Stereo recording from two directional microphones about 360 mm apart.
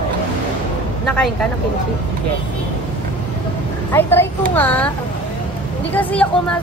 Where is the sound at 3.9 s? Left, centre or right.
Centre.